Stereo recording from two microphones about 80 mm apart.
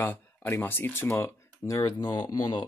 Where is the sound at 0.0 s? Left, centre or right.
Left.